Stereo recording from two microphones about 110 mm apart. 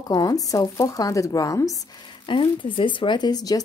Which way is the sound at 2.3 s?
50° left (ahead or behind).